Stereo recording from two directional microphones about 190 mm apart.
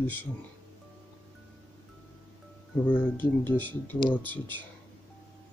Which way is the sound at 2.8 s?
10° left (ahead or behind).